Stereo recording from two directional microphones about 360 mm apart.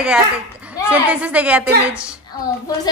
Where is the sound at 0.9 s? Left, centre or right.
Centre.